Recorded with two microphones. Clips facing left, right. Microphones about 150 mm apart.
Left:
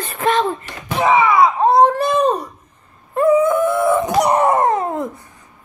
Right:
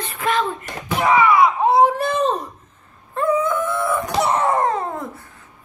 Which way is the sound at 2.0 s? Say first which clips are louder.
Left 4 dB; 15° left (ahead or behind).